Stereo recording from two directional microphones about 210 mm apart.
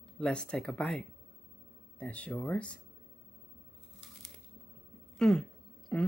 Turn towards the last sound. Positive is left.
turn(degrees=5)  # may be behind; listen again after turning